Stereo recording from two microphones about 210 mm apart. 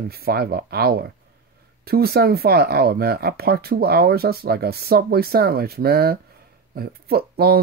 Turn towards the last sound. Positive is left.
turn(degrees=-45)  # may be behind; listen again after turning